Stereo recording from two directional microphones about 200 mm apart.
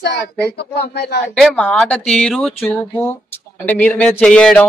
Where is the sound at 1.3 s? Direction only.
5° left (ahead or behind).